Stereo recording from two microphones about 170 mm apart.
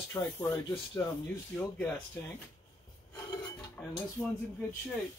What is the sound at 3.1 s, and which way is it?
Filing, 20° left (ahead or behind).